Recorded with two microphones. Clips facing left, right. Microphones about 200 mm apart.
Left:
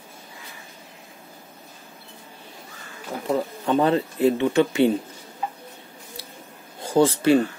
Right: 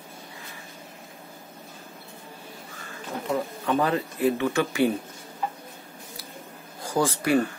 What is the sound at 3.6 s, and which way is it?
Speech, 30° left (ahead or behind).